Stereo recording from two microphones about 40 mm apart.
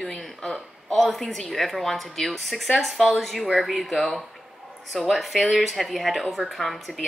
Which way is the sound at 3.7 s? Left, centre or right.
Centre.